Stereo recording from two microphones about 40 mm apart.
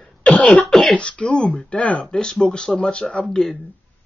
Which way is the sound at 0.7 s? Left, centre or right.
Centre.